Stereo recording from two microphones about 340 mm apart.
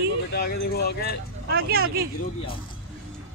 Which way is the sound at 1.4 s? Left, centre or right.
Right.